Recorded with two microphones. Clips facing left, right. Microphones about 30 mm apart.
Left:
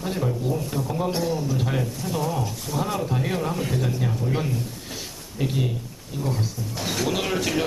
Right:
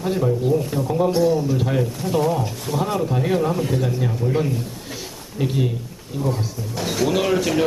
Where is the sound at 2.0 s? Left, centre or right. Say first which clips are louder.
Right 8 dB; centre.